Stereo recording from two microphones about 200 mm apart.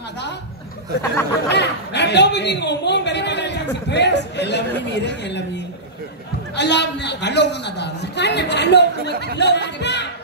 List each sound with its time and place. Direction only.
1.5 s a man's voice: 60° left (ahead or behind)
6.5 s a woman's voice: 60° left (ahead or behind)